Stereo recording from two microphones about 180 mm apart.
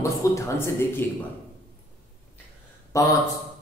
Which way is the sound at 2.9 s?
15° left (ahead or behind).